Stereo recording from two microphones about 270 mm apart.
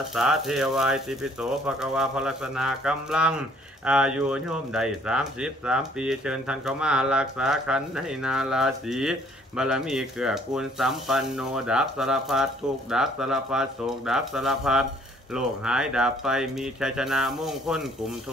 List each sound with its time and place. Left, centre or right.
0.1 s speech: centre